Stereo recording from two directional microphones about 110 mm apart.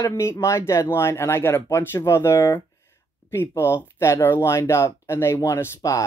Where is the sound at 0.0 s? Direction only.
25° left (ahead or behind).